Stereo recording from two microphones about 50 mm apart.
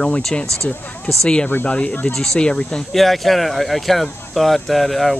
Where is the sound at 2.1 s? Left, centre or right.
Centre.